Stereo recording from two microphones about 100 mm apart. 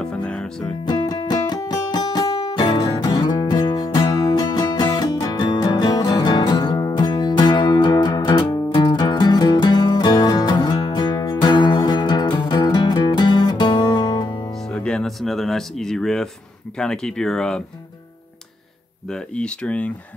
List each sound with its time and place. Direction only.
0.0 s music: 10° left (ahead or behind)
0.8 s music: 45° left (ahead or behind)
14.7 s music: 10° left (ahead or behind)
16.7 s speech: 5° left (ahead or behind)
19.0 s speech: 10° left (ahead or behind)